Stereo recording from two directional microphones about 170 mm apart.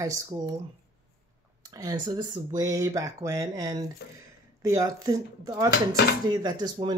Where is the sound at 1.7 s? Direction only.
20° right (ahead or behind).